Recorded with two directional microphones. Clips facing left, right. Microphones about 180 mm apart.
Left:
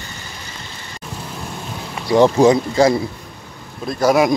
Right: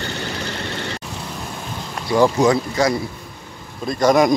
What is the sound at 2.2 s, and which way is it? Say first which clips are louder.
Speech: left 3 dB; 25° left (ahead or behind).